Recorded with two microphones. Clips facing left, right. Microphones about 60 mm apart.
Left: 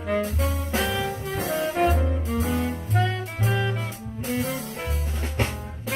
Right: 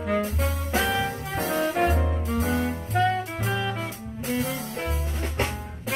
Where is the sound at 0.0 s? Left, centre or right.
Centre.